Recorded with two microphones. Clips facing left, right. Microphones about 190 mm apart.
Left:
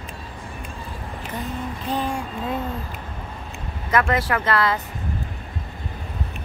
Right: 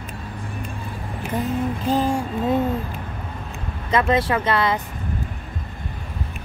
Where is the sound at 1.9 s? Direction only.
35° right (ahead or behind).